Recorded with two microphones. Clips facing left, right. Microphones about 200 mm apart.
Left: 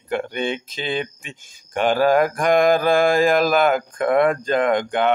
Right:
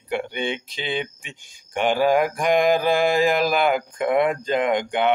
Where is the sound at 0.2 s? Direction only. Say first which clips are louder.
Left 2 dB; 15° right (ahead or behind).